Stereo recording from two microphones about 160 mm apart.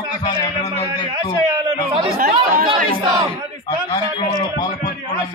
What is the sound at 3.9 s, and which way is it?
Speech, 25° left (ahead or behind).